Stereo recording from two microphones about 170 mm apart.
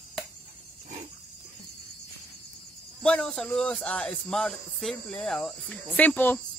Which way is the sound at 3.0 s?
5° left (ahead or behind).